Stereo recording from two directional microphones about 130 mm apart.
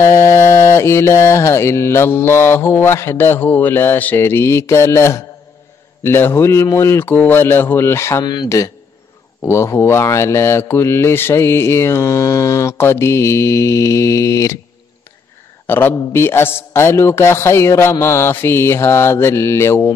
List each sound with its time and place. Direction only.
0.0 s mantra: 20° left (ahead or behind)
15.6 s mantra: 15° left (ahead or behind)